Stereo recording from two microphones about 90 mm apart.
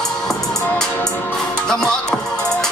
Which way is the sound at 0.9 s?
20° left (ahead or behind).